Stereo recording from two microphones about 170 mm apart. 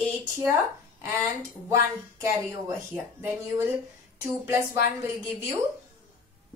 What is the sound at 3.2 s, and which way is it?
Child singing, 15° right (ahead or behind).